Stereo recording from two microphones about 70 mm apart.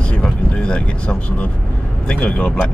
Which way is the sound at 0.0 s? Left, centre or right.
Centre.